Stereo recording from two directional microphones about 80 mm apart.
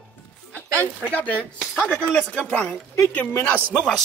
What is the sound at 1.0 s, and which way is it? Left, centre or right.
Speech, centre.